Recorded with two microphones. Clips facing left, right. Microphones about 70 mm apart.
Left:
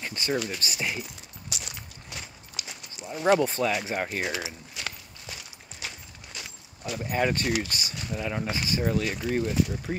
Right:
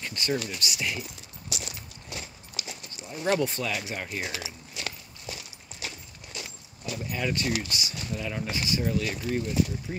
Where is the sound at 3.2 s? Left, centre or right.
Left.